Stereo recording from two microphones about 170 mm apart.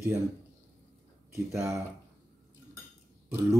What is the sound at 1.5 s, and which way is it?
Speech, 20° right (ahead or behind).